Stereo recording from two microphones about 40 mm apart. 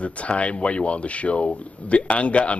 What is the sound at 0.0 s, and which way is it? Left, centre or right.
A man's voice, left.